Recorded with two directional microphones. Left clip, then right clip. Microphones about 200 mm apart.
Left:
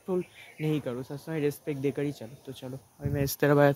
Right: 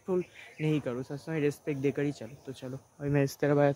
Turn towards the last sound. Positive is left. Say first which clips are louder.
# left 4 dB
turn(degrees=15)  # may be behind; listen again after turning